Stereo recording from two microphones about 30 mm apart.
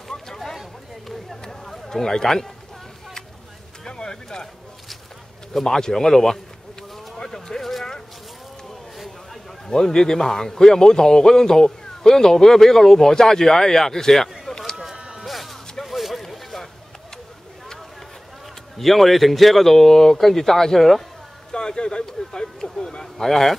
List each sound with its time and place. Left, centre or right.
1.7 s a man's voice: centre
3.8 s speech: left
5.5 s a man's voice: centre
8.9 s a sound: centre
9.8 s a man's voice: centre
15.0 s music: right
15.2 s a sound: centre
16.2 s boat: centre
18.8 s a man's voice: centre
21.5 s a sound: left